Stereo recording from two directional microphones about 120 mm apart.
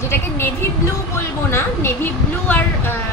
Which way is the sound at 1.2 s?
20° left (ahead or behind).